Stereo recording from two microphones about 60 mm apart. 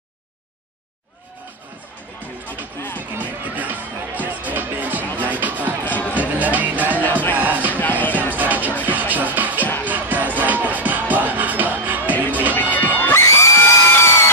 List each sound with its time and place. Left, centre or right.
3.0 s music: right
5.9 s music: left
6.1 s music: right
7.0 s music: left
7.3 s music: right
12.5 s crowd: left
13.1 s a sound: left